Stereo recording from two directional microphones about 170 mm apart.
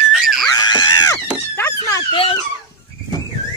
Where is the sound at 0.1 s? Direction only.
5° right (ahead or behind).